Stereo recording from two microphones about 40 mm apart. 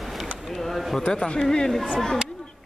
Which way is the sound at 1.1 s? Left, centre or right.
Centre.